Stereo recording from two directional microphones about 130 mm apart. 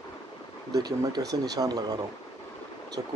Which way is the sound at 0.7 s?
30° right (ahead or behind).